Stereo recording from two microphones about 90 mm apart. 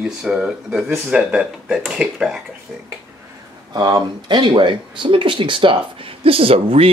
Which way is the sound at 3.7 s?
50° right (ahead or behind).